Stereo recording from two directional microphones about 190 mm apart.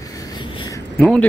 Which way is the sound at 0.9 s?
5° left (ahead or behind).